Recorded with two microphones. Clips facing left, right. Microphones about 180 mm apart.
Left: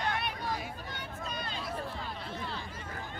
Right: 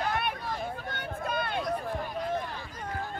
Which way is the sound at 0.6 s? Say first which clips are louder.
Right 6 dB; 55° right (ahead or behind).